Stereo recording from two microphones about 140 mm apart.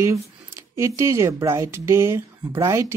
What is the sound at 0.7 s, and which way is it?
Speech, 20° right (ahead or behind).